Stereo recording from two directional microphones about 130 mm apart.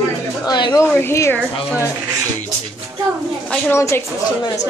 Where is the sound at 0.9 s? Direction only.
20° left (ahead or behind).